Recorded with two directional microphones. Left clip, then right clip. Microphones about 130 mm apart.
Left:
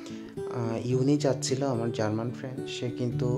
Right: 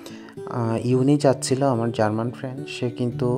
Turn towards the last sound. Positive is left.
turn(degrees=-35)  # may be behind; listen again after turning